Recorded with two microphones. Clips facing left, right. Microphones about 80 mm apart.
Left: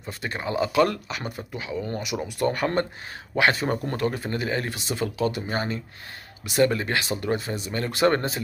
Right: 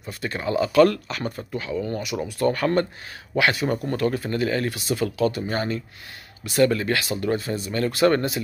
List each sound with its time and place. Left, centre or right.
0.0 s speech: left